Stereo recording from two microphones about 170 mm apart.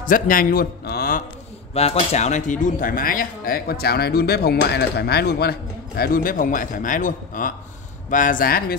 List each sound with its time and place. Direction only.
0.0 s a man's voice: 55° left (ahead or behind)
1.7 s speech: 35° left (ahead or behind); by 8.7 s 60° left (ahead or behind)